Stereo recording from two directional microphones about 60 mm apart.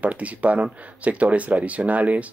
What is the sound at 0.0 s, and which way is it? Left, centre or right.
Speech, right.